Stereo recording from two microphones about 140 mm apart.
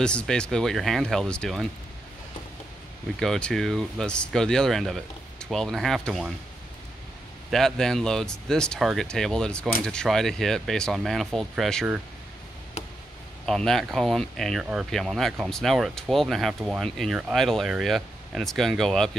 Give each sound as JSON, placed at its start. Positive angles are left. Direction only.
{"t": 0.0, "sound": "speech", "side_deg": 5}
{"t": 3.2, "sound": "speech", "side_deg": 5}
{"t": 7.5, "sound": "speech", "side_deg": 5}
{"t": 13.5, "sound": "speech", "side_deg": 0}